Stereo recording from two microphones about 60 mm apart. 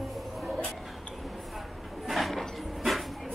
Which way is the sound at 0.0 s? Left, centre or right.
Centre.